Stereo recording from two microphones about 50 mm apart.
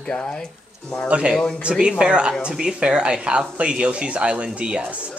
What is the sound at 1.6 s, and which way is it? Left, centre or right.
Speech, centre.